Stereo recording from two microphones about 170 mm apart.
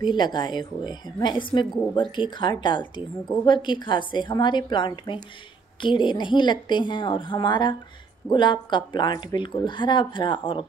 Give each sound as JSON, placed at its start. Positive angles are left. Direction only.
{"t": 0.0, "sound": "a woman's voice", "side_deg": 25}